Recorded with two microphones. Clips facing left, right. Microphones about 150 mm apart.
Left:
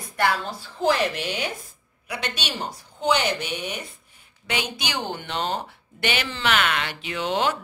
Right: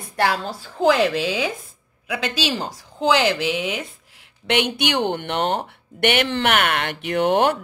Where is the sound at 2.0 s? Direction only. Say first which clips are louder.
Right 7 dB; 90° right.